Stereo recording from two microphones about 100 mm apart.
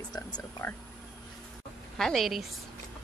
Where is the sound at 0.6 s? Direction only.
15° left (ahead or behind).